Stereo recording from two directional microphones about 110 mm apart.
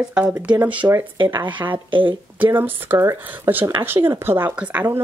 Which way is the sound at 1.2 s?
45° right (ahead or behind).